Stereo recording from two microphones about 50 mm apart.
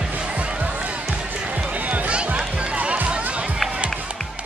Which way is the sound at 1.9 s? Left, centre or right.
Right.